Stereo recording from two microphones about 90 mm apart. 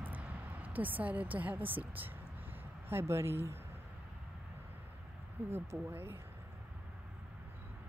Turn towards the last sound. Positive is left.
turn(degrees=-25)  # may be behind; listen again after turning